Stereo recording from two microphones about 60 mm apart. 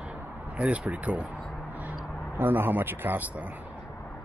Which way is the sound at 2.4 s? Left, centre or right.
Right.